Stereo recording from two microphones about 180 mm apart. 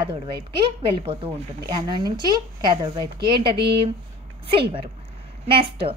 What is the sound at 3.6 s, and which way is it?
Speech, 30° right (ahead or behind).